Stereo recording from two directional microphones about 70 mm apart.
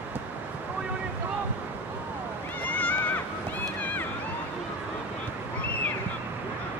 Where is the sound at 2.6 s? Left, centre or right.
Left.